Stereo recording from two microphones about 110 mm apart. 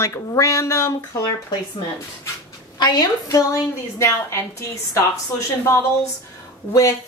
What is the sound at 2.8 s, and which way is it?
A woman's voice, 40° left (ahead or behind).